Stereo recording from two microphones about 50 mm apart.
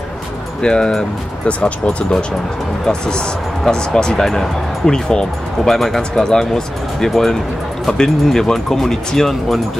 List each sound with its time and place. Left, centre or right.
0.6 s speech: centre